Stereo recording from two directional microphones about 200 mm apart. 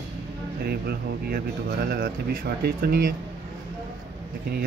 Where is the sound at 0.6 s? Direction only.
50° right (ahead or behind).